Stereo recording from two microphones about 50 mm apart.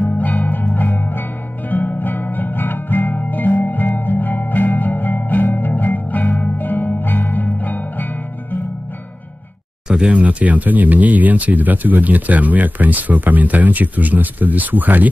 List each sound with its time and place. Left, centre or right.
0.1 s music: left
9.8 s speech: centre; by 15.0 s right